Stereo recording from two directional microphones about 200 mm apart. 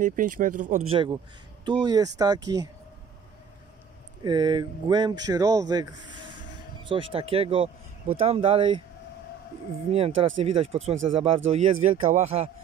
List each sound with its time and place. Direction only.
0.0 s speech: 40° right (ahead or behind); by 2.7 s 20° right (ahead or behind)
4.2 s speech: 20° right (ahead or behind)
9.8 s speech: 30° right (ahead or behind)